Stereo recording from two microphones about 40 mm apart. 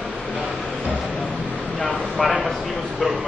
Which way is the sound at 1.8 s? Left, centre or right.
Centre.